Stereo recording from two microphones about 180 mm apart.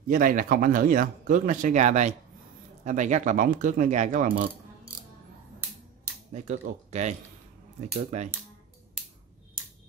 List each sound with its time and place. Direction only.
0.1 s speech: 50° right (ahead or behind)
6.3 s speech: 40° right (ahead or behind)